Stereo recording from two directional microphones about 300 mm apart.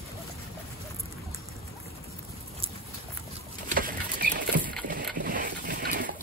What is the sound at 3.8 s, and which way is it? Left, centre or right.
Bird, right.